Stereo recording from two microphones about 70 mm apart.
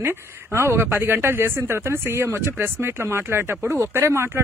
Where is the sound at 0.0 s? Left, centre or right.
Right.